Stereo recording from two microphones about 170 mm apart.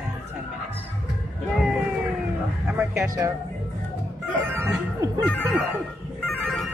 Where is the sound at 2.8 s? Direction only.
15° right (ahead or behind).